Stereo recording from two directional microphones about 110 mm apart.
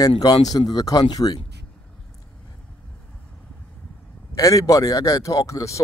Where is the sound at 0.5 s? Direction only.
40° left (ahead or behind).